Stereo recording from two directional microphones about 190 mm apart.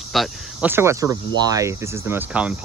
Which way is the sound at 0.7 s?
15° right (ahead or behind).